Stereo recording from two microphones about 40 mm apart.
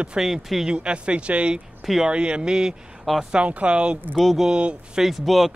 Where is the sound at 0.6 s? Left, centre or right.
Right.